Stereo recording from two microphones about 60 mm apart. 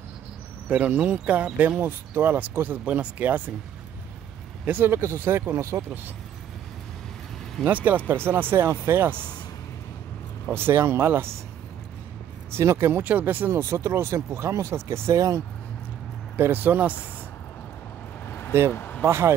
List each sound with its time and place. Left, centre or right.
0.7 s speech: right
1.8 s speech: right
4.6 s speech: right
7.6 s speech: right
10.5 s speech: right
12.6 s speech: right
13.2 s speech: right
13.5 s speech: right
16.3 s speech: right
18.2 s vehicle: left
18.7 s speech: left
19.0 s speech: right